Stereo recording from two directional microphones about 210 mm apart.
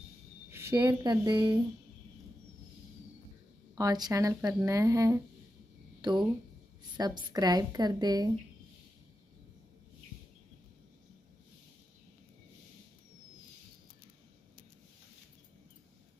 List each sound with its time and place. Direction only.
0.5 s a woman's voice: 10° right (ahead or behind)
3.7 s a woman's voice: 20° right (ahead or behind)
5.9 s a sound: 20° right (ahead or behind)
7.0 s a woman's voice: 20° right (ahead or behind)